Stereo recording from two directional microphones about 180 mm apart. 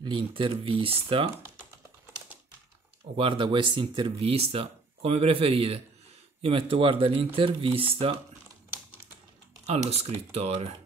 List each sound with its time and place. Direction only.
0.0 s speech: 30° right (ahead or behind)
3.2 s speech: 30° right (ahead or behind)
9.7 s speech: 35° right (ahead or behind)